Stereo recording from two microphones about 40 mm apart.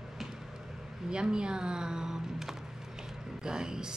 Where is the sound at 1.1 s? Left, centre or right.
Right.